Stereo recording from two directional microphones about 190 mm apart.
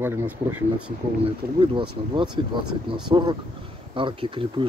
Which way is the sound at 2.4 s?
25° right (ahead or behind).